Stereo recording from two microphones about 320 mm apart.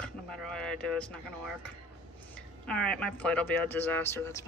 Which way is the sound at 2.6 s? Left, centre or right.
Centre.